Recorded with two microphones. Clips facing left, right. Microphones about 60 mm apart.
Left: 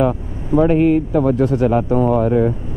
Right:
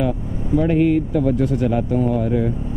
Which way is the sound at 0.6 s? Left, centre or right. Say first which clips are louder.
Left 3 dB; left.